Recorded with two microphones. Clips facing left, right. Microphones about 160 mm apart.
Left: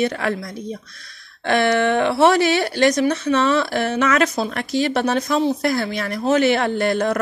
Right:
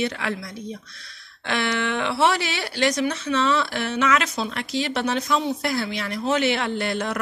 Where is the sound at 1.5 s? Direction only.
50° left (ahead or behind).